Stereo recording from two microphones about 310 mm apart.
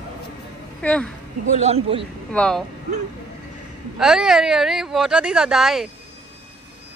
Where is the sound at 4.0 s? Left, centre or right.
Centre.